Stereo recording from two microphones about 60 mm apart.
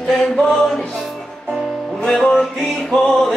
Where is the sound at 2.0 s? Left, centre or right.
Centre.